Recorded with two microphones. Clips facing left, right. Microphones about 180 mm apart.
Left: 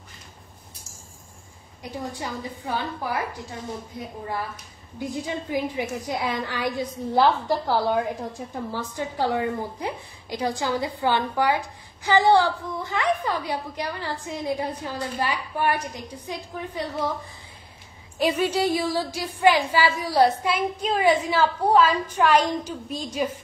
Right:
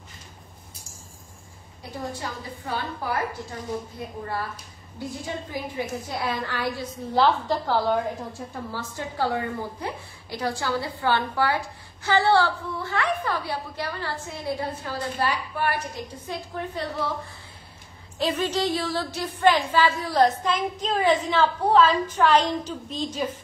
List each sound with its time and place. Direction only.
1.8 s a woman's voice: 15° left (ahead or behind)
4.9 s a woman's voice: 15° left (ahead or behind)
18.2 s a woman's voice: 10° left (ahead or behind)